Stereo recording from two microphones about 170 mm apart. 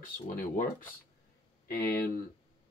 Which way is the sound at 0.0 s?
55° left (ahead or behind).